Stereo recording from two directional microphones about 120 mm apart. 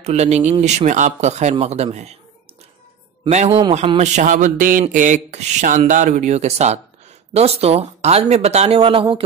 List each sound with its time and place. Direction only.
0.0 s speech: 65° right (ahead or behind)
3.3 s speech: 70° right (ahead or behind)
4.0 s speech: 80° right; by 9.0 s 50° right (ahead or behind)